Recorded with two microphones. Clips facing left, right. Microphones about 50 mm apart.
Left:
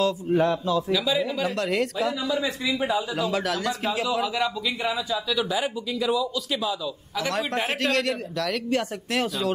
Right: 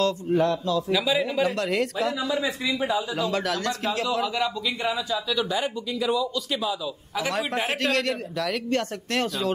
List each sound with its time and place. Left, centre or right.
0.0 s a man's voice: centre
0.9 s a man's voice: centre
2.7 s a man's voice: centre